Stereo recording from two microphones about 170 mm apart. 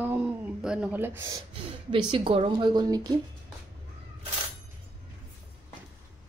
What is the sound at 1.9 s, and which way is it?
Speech, 30° right (ahead or behind).